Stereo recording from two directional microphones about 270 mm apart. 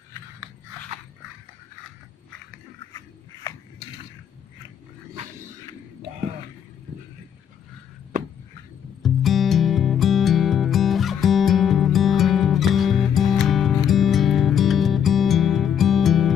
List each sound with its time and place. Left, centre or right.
9.0 s music: centre